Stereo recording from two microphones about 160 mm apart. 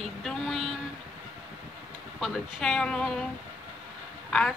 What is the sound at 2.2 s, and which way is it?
A woman's voice, 5° left (ahead or behind).